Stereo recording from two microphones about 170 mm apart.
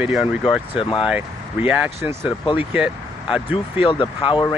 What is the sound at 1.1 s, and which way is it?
Speech, 10° right (ahead or behind).